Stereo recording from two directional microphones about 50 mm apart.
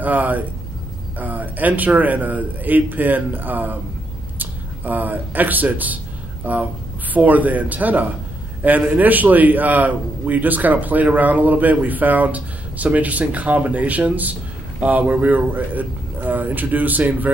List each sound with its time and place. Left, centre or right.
0.0 s a man's voice: right